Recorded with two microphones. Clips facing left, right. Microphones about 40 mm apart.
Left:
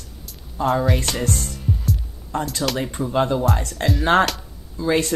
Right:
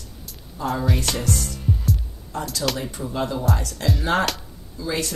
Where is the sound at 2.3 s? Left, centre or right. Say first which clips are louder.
Left 3 dB; left.